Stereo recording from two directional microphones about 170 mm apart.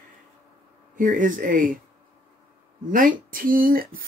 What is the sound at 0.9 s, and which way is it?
Speech, 50° right (ahead or behind).